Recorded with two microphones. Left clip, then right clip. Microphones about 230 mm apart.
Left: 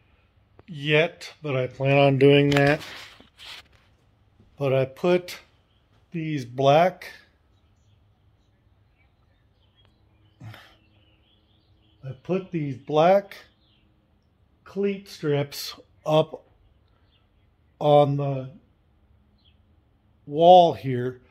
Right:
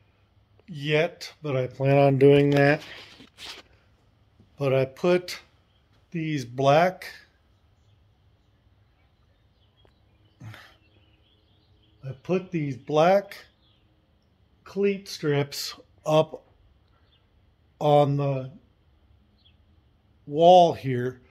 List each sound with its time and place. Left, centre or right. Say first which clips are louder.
0.7 s speech: left 3 dB; centre
1.7 s speech: left 1 dB; centre
4.6 s speech: left 1 dB; centre
10.4 s a sound: even; centre
12.0 s speech: even; centre
14.6 s speech: right 2 dB; centre
17.7 s speech: left 2 dB; centre
20.2 s speech: left 2 dB; centre